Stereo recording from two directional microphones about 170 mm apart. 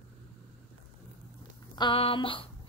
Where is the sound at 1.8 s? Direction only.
30° left (ahead or behind).